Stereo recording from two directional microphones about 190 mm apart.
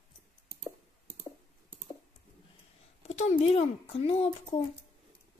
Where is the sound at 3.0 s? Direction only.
35° left (ahead or behind).